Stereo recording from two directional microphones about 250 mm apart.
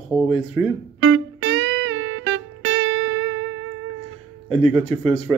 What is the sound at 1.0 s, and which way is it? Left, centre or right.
Music, right.